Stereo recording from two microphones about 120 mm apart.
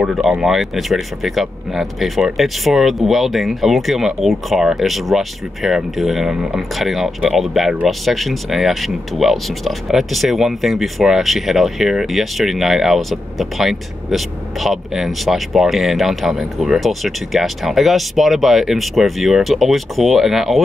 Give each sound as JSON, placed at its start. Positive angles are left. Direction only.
{"t": 0.0, "sound": "speech", "side_deg": -5}